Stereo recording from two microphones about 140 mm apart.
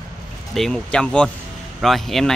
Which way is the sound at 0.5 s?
5° left (ahead or behind).